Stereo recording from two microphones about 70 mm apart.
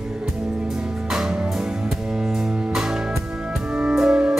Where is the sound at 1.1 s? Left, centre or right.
Centre.